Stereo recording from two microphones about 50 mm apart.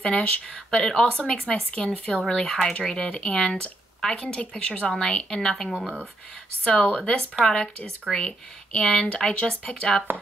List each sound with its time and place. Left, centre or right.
0.0 s a woman's voice: centre
6.6 s a woman's voice: left